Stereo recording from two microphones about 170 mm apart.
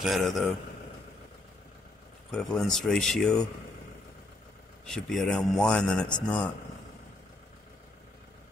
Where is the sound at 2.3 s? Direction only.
5° left (ahead or behind).